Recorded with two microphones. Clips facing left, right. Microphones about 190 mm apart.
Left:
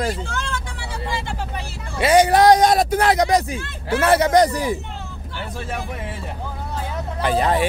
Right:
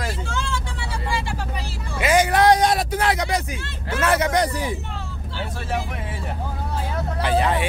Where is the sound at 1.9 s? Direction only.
35° left (ahead or behind).